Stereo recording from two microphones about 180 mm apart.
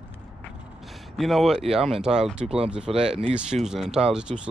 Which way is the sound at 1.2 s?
Centre (ahead or behind).